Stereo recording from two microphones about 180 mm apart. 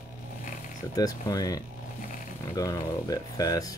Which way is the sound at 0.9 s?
20° left (ahead or behind).